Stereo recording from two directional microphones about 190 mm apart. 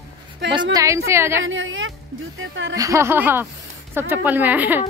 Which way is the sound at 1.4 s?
90° right.